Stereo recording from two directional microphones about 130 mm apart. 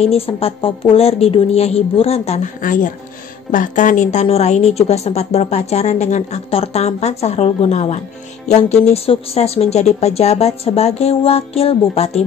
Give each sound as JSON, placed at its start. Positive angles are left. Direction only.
{"t": 0.0, "sound": "a woman's voice", "side_deg": 50}
{"t": 2.6, "sound": "a woman's voice", "side_deg": 90}
{"t": 6.5, "sound": "a woman's voice", "side_deg": 50}
{"t": 8.8, "sound": "a woman's voice", "side_deg": 50}